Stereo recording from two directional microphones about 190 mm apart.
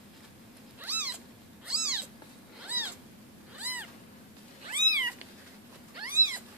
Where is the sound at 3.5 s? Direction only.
10° right (ahead or behind).